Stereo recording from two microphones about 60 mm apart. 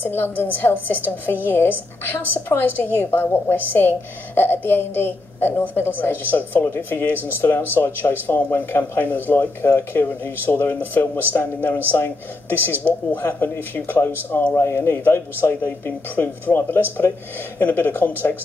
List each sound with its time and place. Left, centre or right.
0.0 s a woman's voice: left